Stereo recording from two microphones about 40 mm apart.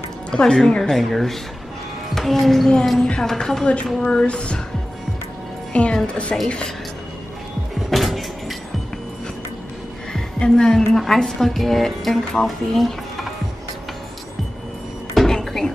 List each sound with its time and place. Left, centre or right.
0.3 s speech: centre
4.0 s speech: left
5.7 s speech: left
7.9 s music: centre
10.4 s speech: centre
15.1 s a sound: centre